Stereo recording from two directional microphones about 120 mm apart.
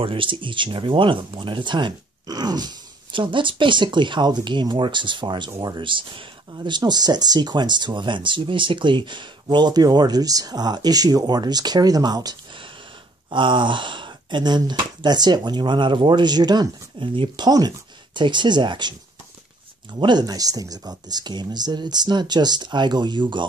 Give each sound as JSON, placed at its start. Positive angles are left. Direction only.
{"t": 0.0, "sound": "speech", "side_deg": -45}
{"t": 17.5, "sound": "speech", "side_deg": -35}
{"t": 20.0, "sound": "speech", "side_deg": -35}